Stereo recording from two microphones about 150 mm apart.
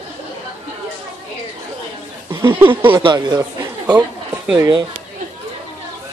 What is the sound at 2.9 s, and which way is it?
Speech, 30° right (ahead or behind).